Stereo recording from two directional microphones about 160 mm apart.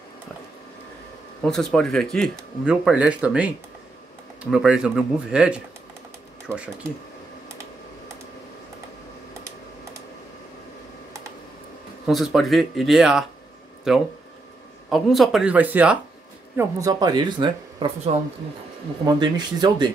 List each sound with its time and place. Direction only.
1.4 s speech: 5° left (ahead or behind)
6.5 s speech: 15° right (ahead or behind)
12.1 s speech: centre (ahead or behind)
16.5 s speech: 25° right (ahead or behind)
19.0 s speech: 25° right (ahead or behind)